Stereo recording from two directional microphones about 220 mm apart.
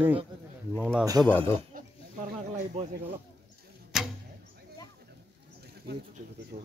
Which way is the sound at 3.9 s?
Centre (ahead or behind).